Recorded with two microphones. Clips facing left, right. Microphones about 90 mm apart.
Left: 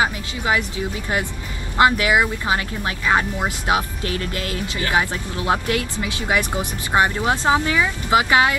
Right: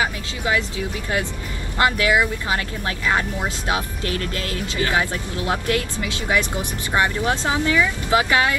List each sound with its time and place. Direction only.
0.0 s vehicle: 20° left (ahead or behind)
1.8 s speech: 20° left (ahead or behind)